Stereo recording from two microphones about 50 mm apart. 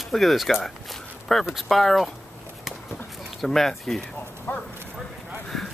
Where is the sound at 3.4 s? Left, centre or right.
Centre.